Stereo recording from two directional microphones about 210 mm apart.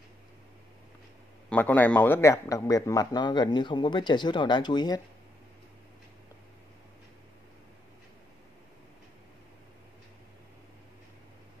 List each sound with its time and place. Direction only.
1.5 s a man's voice: 5° left (ahead or behind)